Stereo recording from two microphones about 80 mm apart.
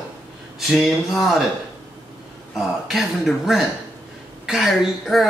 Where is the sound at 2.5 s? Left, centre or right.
Centre.